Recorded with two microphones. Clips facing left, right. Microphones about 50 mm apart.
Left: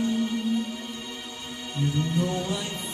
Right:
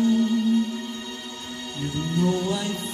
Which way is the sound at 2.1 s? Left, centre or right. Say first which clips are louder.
Right 4 dB; left.